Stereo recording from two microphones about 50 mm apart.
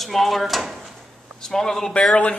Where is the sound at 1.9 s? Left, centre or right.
Left.